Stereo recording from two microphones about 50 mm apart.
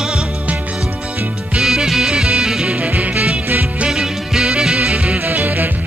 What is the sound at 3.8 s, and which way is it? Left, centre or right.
Music, centre.